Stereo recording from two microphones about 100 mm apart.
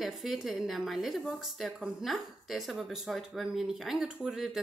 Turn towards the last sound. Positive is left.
turn(degrees=-5)  # may be behind; listen again after turning